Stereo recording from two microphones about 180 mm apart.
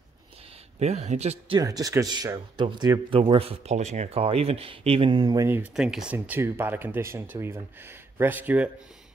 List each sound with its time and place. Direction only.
0.7 s speech: 35° right (ahead or behind)
1.6 s speech: 20° right (ahead or behind)
5.8 s speech: 5° right (ahead or behind)